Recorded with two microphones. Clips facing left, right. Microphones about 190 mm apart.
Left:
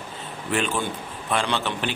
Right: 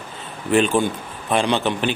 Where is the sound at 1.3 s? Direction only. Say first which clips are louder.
Right 6 dB; 15° right (ahead or behind).